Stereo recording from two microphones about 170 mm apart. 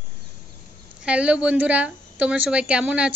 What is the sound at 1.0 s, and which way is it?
A woman's voice, 5° right (ahead or behind).